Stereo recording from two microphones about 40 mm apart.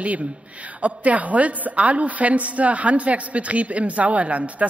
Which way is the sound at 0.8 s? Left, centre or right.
Right.